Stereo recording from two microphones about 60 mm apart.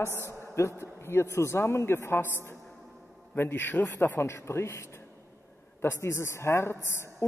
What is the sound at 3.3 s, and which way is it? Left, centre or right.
A man's voice, left.